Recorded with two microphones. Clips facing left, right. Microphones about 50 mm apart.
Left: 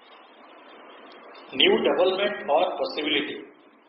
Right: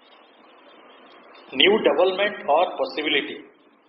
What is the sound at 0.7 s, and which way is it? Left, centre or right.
Vehicle, left.